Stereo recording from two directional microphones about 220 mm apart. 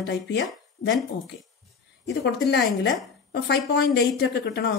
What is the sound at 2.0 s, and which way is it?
Speech, 50° left (ahead or behind).